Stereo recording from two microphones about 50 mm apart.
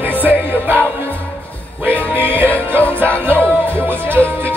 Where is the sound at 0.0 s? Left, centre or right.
Right.